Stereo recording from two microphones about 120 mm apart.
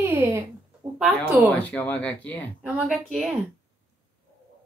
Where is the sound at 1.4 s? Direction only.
10° left (ahead or behind).